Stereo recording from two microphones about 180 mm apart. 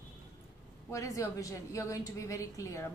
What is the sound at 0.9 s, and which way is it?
A woman's voice, 20° left (ahead or behind).